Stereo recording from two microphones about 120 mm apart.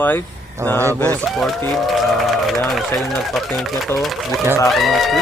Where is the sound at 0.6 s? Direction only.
25° right (ahead or behind).